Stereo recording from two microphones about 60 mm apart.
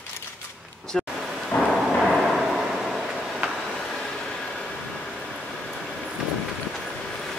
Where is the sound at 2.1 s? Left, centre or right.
Centre.